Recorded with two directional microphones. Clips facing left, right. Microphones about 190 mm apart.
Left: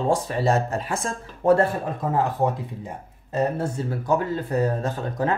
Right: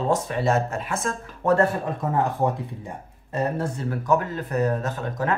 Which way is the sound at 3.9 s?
30° left (ahead or behind).